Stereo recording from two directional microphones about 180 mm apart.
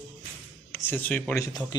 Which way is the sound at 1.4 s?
20° left (ahead or behind).